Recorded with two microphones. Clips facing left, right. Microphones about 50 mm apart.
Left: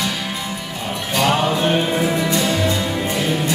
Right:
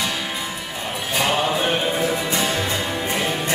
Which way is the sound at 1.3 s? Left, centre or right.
Centre.